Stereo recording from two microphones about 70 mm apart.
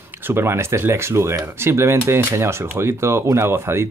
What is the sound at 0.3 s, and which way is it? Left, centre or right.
Speech, right.